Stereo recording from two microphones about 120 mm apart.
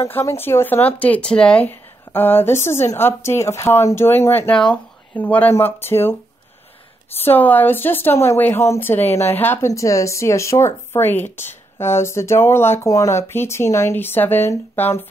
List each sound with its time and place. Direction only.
0.0 s a woman's voice: 25° left (ahead or behind)
7.2 s a woman's voice: 15° left (ahead or behind)